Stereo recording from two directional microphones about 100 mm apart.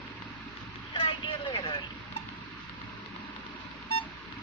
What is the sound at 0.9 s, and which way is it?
Vehicle, 60° left (ahead or behind).